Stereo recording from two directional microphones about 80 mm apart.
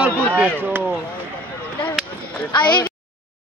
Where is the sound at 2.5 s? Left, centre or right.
Left.